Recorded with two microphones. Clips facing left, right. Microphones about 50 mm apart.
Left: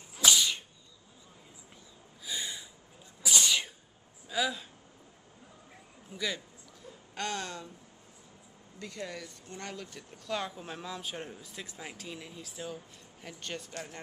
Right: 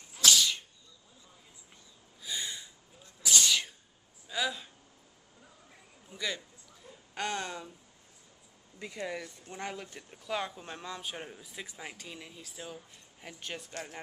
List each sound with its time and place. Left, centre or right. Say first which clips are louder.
0.2 s whip: even; centre
2.2 s a sound: even; centre
3.2 s sneeze: even; centre
4.3 s speech: left 2 dB; centre
6.0 s a man's voice: left 1 dB; centre
8.7 s speech: right 3 dB; centre
10.5 s speech: left 1 dB; centre